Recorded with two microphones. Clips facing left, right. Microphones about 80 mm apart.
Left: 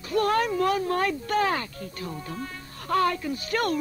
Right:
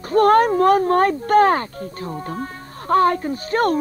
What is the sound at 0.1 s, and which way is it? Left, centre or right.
Speech, right.